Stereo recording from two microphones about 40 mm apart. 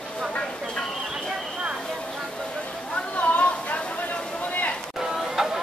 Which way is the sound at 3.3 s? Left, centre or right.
Left.